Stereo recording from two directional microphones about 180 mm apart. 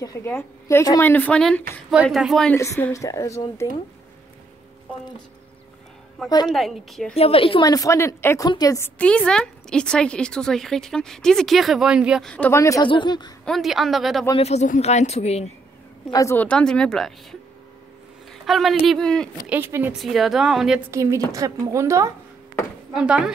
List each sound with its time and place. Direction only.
0.0 s a woman's voice: 15° left (ahead or behind)
2.5 s a woman's voice: 15° left (ahead or behind)
6.4 s speech: centre (ahead or behind)
7.2 s a woman's voice: 30° left (ahead or behind)
13.5 s speech: centre (ahead or behind)
14.3 s speech: 35° left (ahead or behind)
16.1 s speech: 15° left (ahead or behind)
18.4 s speech: centre (ahead or behind)
19.4 s speech: 10° right (ahead or behind)
20.9 s a woman's voice: 15° right (ahead or behind)
22.9 s speech: 5° right (ahead or behind)